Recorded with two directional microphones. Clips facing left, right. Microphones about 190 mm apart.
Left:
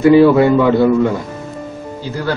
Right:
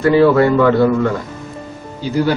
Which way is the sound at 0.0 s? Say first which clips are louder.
Left 3 dB; 10° left (ahead or behind).